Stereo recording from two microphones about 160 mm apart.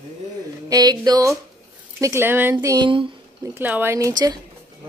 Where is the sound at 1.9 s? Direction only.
15° right (ahead or behind).